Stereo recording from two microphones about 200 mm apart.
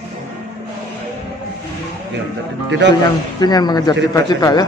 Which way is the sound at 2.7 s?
65° right (ahead or behind).